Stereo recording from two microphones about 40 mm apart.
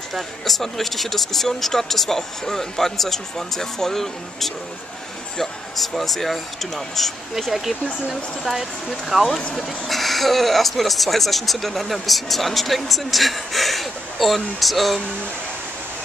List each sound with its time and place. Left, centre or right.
0.1 s speech: centre